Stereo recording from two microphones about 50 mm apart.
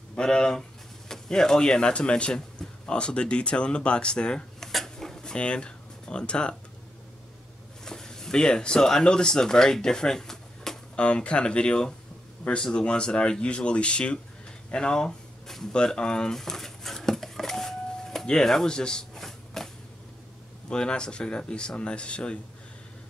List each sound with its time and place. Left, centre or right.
0.1 s speech: centre
4.6 s a sound: centre
7.8 s speech: centre
11.0 s speech: left
14.7 s a sound: centre
15.7 s speech: centre
16.3 s doorbell: centre
20.7 s speech: centre